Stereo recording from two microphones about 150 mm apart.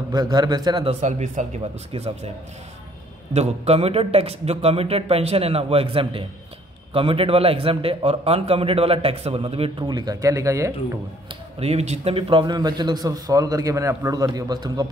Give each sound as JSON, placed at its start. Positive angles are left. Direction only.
{"t": 0.1, "sound": "a man's voice", "side_deg": -25}
{"t": 0.8, "sound": "speech", "side_deg": -50}
{"t": 1.9, "sound": "a man's voice", "side_deg": -40}
{"t": 3.3, "sound": "a man's voice", "side_deg": -45}
{"t": 9.8, "sound": "a man's voice", "side_deg": -25}
{"t": 11.6, "sound": "a man's voice", "side_deg": -45}